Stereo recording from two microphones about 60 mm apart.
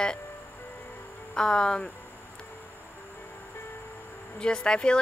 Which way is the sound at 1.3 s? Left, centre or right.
Centre.